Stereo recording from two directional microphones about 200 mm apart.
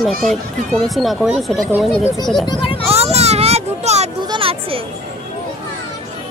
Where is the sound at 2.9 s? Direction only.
30° right (ahead or behind).